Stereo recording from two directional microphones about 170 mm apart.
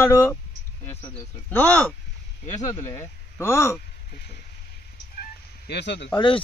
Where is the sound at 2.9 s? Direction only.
15° left (ahead or behind).